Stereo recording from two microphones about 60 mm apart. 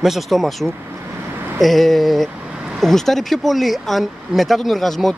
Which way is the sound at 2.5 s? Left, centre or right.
Centre.